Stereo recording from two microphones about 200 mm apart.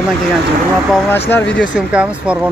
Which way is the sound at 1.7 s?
5° right (ahead or behind).